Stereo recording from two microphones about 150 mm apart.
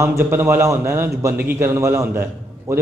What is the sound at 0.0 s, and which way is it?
A man's voice, 15° right (ahead or behind).